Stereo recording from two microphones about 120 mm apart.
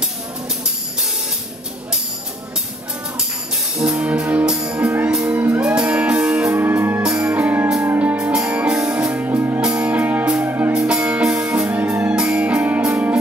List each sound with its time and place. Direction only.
3.7 s music: 5° right (ahead or behind)
5.6 s music: 10° right (ahead or behind)
6.5 s music: 20° right (ahead or behind)
7.0 s music: 5° right (ahead or behind)
10.7 s music: 5° right (ahead or behind)